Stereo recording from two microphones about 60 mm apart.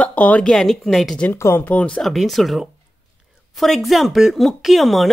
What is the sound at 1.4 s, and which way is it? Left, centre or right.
Speech, left.